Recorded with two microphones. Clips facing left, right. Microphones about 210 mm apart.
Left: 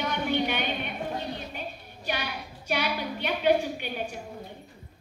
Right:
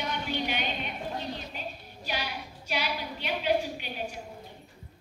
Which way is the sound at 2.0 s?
55° left (ahead or behind).